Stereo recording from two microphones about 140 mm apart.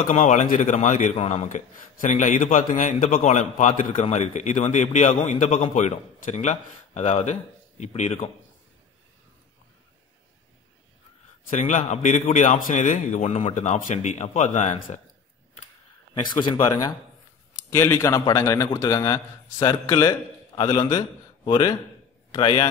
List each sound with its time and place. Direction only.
0.1 s a man's voice: 65° left (ahead or behind)
11.6 s a man's voice: 60° left (ahead or behind)
16.6 s a man's voice: 25° left (ahead or behind)